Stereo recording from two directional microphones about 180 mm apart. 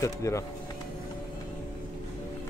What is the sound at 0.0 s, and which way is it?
Speech, 15° left (ahead or behind).